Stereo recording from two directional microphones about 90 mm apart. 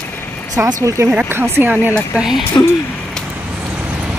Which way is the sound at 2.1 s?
5° right (ahead or behind).